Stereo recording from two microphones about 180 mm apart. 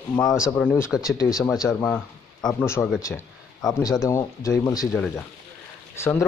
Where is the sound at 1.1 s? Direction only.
20° left (ahead or behind).